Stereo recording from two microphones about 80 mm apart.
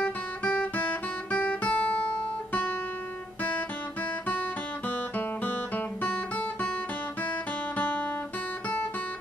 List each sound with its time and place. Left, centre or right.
0.0 s guitar: centre
4.8 s guitar: centre
7.7 s guitar: left